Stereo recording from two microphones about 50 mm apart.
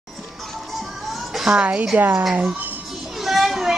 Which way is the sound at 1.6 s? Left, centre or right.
Right.